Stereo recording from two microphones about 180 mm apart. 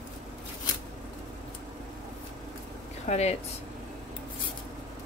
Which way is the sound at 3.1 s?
35° left (ahead or behind).